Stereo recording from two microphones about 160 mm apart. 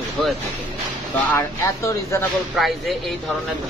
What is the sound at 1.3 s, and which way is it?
Speech, 20° left (ahead or behind).